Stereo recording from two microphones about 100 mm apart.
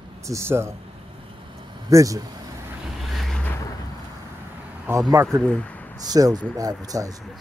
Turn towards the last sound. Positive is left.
turn(degrees=-35)  # may be behind; listen again after turning